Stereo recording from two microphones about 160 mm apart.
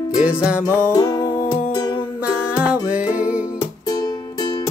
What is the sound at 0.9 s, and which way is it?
Music, 20° left (ahead or behind).